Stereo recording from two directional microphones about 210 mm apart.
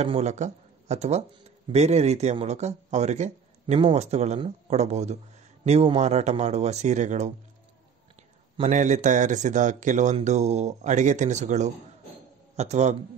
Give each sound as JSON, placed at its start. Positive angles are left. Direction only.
{"t": 0.0, "sound": "speech", "side_deg": -30}
{"t": 8.5, "sound": "speech", "side_deg": -35}